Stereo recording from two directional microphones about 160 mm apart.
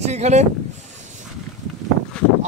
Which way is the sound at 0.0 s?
45° right (ahead or behind).